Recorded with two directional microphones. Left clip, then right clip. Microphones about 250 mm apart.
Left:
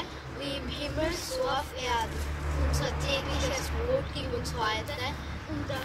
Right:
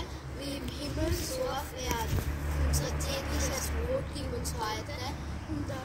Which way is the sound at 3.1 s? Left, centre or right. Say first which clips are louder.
Left 4 dB; centre.